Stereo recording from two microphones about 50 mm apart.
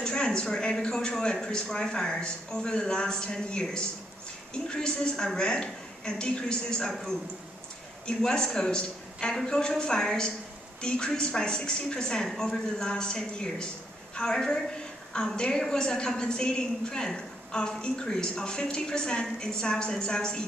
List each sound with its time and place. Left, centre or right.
0.0 s a woman's voice: centre
8.2 s a woman's voice: centre